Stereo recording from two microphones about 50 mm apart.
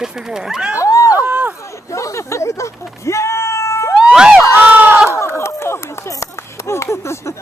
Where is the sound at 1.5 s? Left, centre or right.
Left.